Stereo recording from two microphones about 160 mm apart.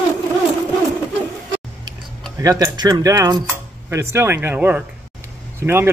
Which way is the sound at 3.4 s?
15° right (ahead or behind).